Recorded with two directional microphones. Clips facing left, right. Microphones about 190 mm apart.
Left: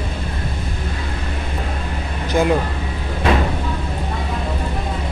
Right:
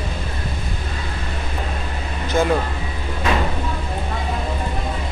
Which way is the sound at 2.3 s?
15° left (ahead or behind).